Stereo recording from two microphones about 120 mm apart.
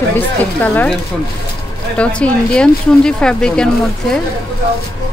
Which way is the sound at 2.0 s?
10° left (ahead or behind).